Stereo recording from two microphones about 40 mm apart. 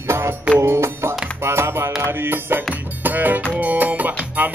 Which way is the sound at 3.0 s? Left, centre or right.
Right.